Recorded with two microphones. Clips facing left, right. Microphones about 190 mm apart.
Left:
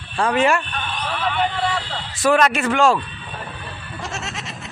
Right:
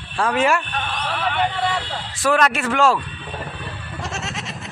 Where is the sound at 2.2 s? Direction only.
Centre (ahead or behind).